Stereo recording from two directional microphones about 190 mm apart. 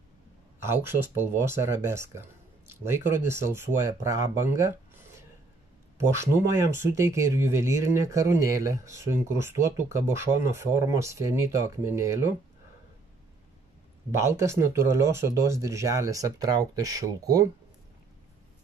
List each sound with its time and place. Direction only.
0.7 s speech: 10° right (ahead or behind)
14.2 s speech: 15° right (ahead or behind)